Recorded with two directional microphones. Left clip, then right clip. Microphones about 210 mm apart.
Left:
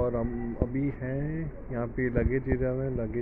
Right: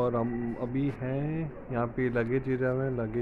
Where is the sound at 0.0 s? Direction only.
20° right (ahead or behind).